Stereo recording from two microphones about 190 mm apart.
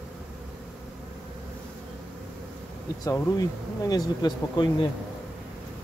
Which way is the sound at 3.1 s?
20° left (ahead or behind).